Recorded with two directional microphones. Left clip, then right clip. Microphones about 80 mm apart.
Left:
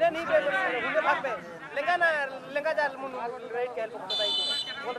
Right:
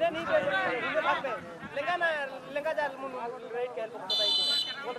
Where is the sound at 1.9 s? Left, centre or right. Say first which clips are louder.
Left 5 dB; left.